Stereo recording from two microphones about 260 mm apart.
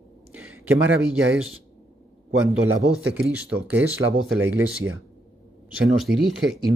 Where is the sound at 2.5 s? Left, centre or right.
Right.